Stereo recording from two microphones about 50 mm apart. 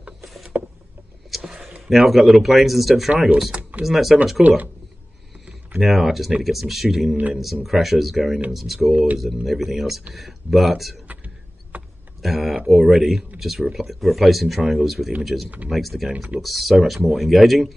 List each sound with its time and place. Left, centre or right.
0.2 s a sound: centre
2.4 s speech: centre
3.1 s speech: right
3.8 s speech: centre
4.4 s speech: right
5.8 s speech: centre
8.9 s speech: right
9.2 s speech: centre
11.1 s a sound: right
12.2 s speech: centre